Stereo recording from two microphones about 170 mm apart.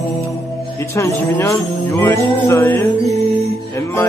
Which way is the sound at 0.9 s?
15° left (ahead or behind).